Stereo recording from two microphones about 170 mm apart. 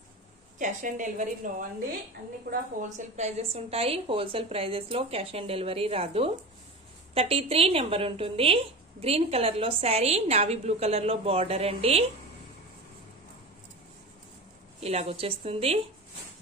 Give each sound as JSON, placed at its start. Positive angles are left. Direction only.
{"t": 0.6, "sound": "a woman's voice", "side_deg": -45}
{"t": 3.0, "sound": "a woman's voice", "side_deg": -40}
{"t": 14.8, "sound": "a woman's voice", "side_deg": -35}